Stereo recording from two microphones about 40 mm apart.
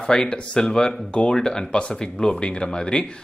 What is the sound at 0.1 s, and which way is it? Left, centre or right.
Speech, centre.